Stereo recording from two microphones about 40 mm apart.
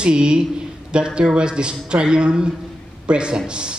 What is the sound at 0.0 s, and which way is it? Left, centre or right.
Speech, right.